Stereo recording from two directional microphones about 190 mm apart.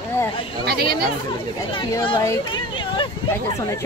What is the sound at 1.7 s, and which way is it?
Speech, 25° left (ahead or behind).